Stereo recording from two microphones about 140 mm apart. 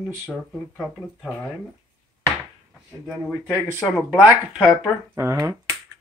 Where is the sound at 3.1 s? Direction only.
Centre (ahead or behind).